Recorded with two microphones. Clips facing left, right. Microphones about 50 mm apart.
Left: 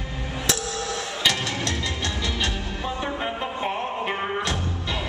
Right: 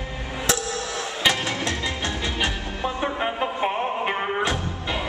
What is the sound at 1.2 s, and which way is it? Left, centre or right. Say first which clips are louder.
Music: right 2 dB; centre.